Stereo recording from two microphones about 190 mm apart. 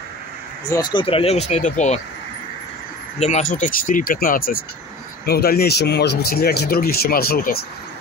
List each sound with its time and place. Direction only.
0.7 s speech: 20° left (ahead or behind); by 2.0 s 35° left (ahead or behind)
3.2 s speech: 35° left (ahead or behind)